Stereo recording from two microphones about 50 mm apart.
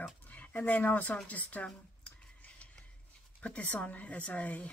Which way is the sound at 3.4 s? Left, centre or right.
Left.